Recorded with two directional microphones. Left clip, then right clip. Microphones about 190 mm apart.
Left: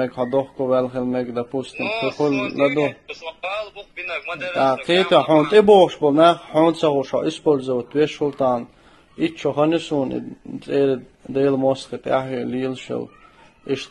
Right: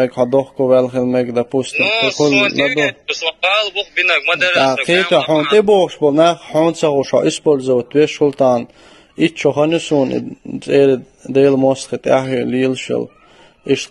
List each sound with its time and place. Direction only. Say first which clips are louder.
0.0 s a man's voice: right 7 dB; 35° right (ahead or behind)
1.8 s a man's voice: right 8 dB; 50° right (ahead or behind)
5.5 s a man's voice: even; 35° right (ahead or behind)